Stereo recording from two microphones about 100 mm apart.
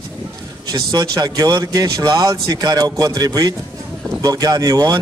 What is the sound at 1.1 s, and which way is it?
Speech, 40° right (ahead or behind).